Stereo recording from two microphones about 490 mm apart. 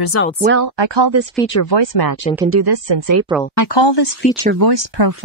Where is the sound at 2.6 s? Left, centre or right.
Right.